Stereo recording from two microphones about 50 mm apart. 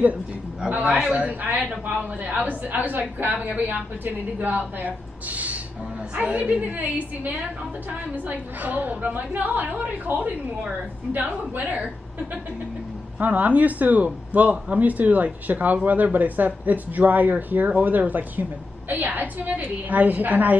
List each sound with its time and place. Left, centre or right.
0.7 s a woman's voice: right
7.9 s speech: right
13.2 s speech: right